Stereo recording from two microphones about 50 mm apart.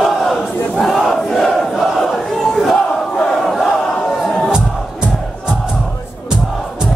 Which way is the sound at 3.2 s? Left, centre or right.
Centre.